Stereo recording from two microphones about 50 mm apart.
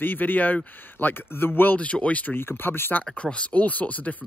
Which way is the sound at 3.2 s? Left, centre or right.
Left.